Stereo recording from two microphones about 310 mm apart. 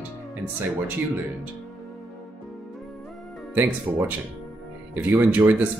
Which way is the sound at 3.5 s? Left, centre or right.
Centre.